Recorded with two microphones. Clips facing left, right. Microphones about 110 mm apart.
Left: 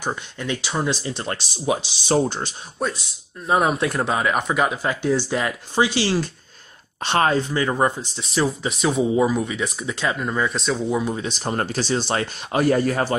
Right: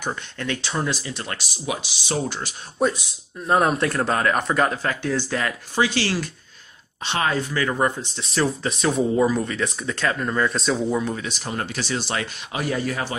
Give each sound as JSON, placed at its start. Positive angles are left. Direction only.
{"t": 0.0, "sound": "speech", "side_deg": 15}
{"t": 0.8, "sound": "speech", "side_deg": 30}
{"t": 2.8, "sound": "speech", "side_deg": 0}
{"t": 7.0, "sound": "speech", "side_deg": 50}
{"t": 7.2, "sound": "speech", "side_deg": 25}
{"t": 8.2, "sound": "speech", "side_deg": 0}
{"t": 11.1, "sound": "speech", "side_deg": 30}